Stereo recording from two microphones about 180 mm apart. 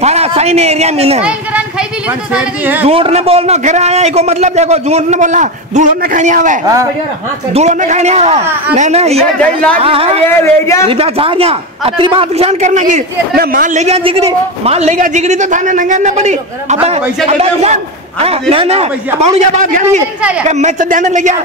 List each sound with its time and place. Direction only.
0.0 s a man's voice: 35° right (ahead or behind)
2.3 s speech: 10° right (ahead or behind)
2.8 s a man's voice: 35° right (ahead or behind)
10.2 s a man's voice: 15° left (ahead or behind)
10.9 s a man's voice: 30° right (ahead or behind)
13.4 s a woman's voice: 50° right (ahead or behind)
13.8 s a man's voice: 35° right (ahead or behind)